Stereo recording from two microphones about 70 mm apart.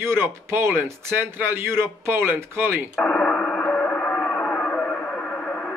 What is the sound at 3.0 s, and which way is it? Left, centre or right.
Radio, centre.